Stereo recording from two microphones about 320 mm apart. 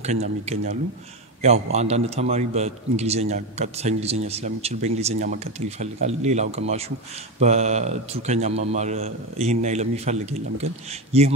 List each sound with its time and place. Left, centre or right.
0.0 s a man's voice: centre